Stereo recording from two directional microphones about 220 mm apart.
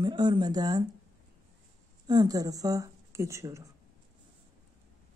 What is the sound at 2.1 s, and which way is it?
Speech, 20° right (ahead or behind).